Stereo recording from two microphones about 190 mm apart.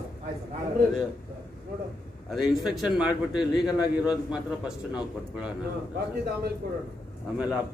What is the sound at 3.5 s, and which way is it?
Speech, 20° left (ahead or behind).